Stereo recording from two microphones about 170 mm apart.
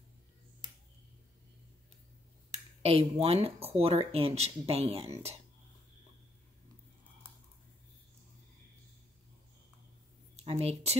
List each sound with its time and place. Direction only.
2.8 s speech: 35° right (ahead or behind)
10.3 s speech: 35° right (ahead or behind)